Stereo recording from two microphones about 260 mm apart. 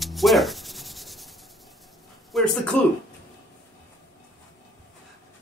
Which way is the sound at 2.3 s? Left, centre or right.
Centre.